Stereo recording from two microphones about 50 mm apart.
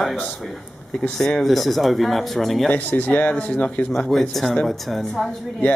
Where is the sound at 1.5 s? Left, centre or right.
Centre.